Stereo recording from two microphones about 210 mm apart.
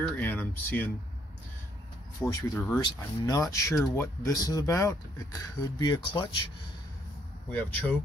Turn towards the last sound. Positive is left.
turn(degrees=5)  # may be behind; listen again after turning